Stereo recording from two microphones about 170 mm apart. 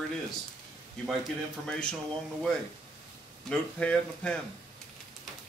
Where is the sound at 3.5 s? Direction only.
5° left (ahead or behind).